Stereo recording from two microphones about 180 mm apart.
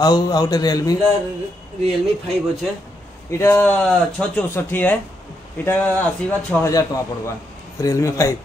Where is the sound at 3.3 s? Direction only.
15° left (ahead or behind).